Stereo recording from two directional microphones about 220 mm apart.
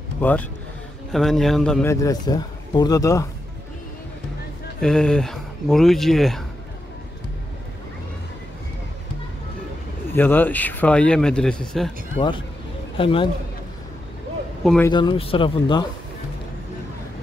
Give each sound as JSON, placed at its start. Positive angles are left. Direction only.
{"t": 0.2, "sound": "speech", "side_deg": 5}
{"t": 4.7, "sound": "speech", "side_deg": 5}
{"t": 10.1, "sound": "speech", "side_deg": 10}
{"t": 12.9, "sound": "a man's voice", "side_deg": 25}
{"t": 14.6, "sound": "a man's voice", "side_deg": 0}
{"t": 14.9, "sound": "speech", "side_deg": 20}